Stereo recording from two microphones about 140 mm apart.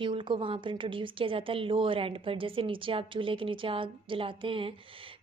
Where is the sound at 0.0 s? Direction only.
35° right (ahead or behind).